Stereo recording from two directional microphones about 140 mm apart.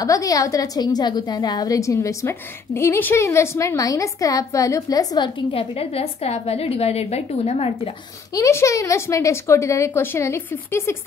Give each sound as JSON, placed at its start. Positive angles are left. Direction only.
{"t": 0.0, "sound": "a woman's voice", "side_deg": 25}
{"t": 8.3, "sound": "a woman's voice", "side_deg": 20}